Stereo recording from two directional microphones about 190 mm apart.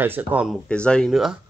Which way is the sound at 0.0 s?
10° right (ahead or behind).